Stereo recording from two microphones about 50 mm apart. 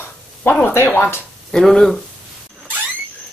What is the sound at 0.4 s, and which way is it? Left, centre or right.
Speech, left.